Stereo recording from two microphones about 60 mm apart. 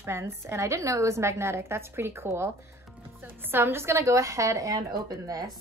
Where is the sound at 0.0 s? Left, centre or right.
Right.